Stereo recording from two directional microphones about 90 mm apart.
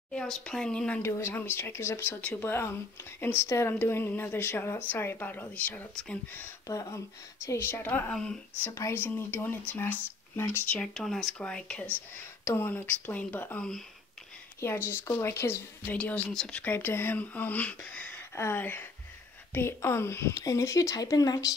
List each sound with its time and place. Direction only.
0.1 s speech: 10° left (ahead or behind)
1.0 s a woman's voice: 30° left (ahead or behind)
6.7 s a woman's voice: 40° left (ahead or behind); by 8.0 s 25° left (ahead or behind)
8.1 s speech: 10° left (ahead or behind)
8.6 s a woman's voice: 30° left (ahead or behind)
10.7 s speech: 10° left (ahead or behind)
12.4 s a woman's voice: 25° left (ahead or behind); by 21.5 s 40° left (ahead or behind)